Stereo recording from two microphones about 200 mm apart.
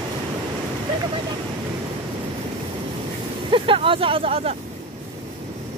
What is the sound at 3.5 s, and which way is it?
Speech, 25° right (ahead or behind).